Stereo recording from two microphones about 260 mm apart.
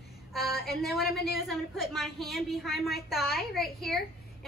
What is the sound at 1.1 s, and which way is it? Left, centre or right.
A woman's voice, centre.